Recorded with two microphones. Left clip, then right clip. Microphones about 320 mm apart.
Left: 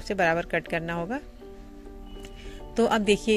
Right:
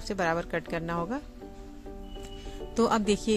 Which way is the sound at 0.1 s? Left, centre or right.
Centre.